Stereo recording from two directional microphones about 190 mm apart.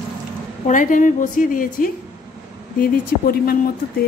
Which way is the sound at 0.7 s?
45° left (ahead or behind).